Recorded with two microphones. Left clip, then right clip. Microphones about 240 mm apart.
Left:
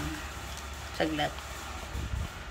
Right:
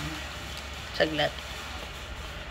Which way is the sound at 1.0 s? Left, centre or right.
Centre.